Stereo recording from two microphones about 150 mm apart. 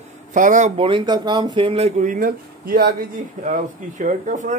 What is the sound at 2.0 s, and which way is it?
Speech, 65° right (ahead or behind).